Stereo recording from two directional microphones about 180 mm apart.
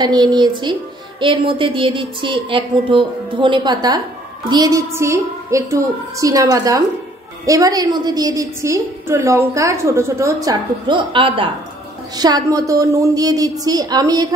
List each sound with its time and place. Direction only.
0.0 s a woman's voice: 20° right (ahead or behind)